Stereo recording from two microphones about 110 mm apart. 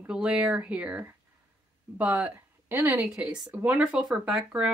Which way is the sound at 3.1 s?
5° right (ahead or behind).